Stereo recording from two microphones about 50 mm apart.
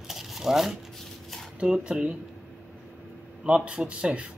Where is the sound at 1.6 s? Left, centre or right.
Centre.